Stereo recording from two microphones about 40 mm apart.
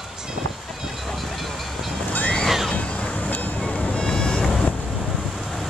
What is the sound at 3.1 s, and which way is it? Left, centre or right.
Music, left.